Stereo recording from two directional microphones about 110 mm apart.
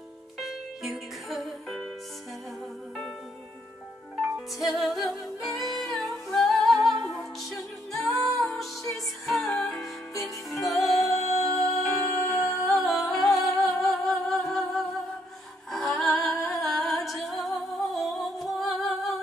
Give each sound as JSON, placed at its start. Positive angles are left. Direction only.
{"t": 0.4, "sound": "music", "side_deg": 0}
{"t": 4.6, "sound": "music", "side_deg": 0}
{"t": 11.9, "sound": "music", "side_deg": 30}
{"t": 12.6, "sound": "music", "side_deg": 0}
{"t": 17.9, "sound": "humming", "side_deg": 0}